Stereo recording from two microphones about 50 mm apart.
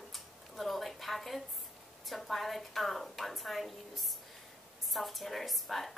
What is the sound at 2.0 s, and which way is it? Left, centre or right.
A woman's voice, centre.